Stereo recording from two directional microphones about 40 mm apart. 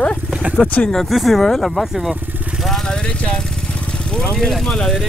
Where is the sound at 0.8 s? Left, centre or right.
Left.